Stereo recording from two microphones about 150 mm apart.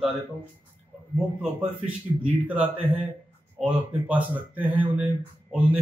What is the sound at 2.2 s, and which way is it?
A man's voice, 10° right (ahead or behind).